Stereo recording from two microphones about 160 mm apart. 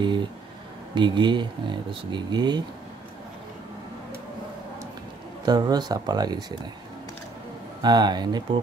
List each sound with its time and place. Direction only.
0.9 s speech: 30° right (ahead or behind)
5.4 s speech: 25° right (ahead or behind)
7.8 s speech: 25° right (ahead or behind)